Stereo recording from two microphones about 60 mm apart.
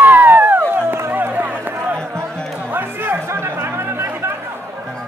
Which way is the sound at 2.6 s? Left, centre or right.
Right.